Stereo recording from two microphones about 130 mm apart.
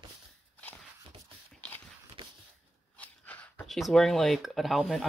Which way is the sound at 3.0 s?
10° left (ahead or behind).